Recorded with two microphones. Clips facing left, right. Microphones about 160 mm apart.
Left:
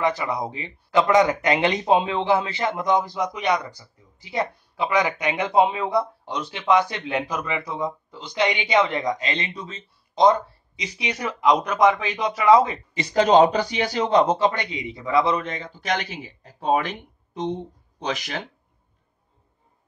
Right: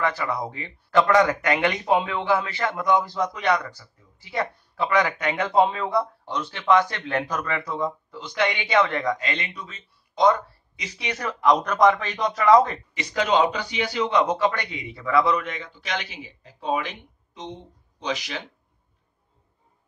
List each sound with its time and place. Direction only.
0.0 s speech: 15° left (ahead or behind)
12.9 s a man's voice: 35° left (ahead or behind)
14.2 s a man's voice: 25° left (ahead or behind); by 18.4 s 50° left (ahead or behind)